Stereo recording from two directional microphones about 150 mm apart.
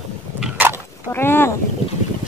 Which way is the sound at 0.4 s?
10° right (ahead or behind).